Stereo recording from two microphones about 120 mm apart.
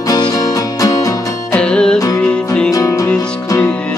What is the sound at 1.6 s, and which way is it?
Music, 5° left (ahead or behind).